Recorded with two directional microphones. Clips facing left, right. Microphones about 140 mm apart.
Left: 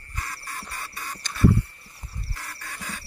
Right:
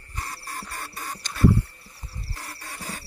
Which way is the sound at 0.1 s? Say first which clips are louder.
Right 1 dB; 30° right (ahead or behind).